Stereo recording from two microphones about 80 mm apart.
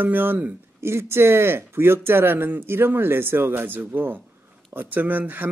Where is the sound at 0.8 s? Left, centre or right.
Right.